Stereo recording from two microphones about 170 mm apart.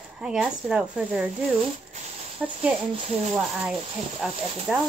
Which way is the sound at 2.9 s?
40° right (ahead or behind).